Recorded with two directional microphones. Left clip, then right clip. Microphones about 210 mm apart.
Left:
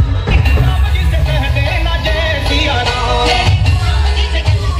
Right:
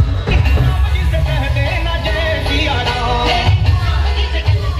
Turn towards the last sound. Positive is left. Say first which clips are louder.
# left 3 dB
turn(degrees=55)  # may be behind; listen again after turning